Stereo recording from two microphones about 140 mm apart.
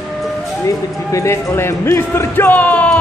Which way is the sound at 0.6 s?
20° left (ahead or behind).